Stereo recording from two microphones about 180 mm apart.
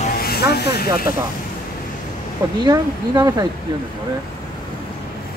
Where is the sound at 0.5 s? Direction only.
60° left (ahead or behind).